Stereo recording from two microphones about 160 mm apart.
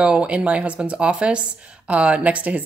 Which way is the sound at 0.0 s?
5° right (ahead or behind).